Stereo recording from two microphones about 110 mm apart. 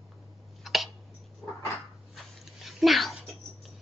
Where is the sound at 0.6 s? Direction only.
Centre (ahead or behind).